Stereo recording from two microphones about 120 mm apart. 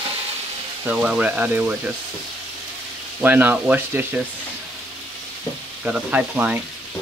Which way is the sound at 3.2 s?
15° right (ahead or behind).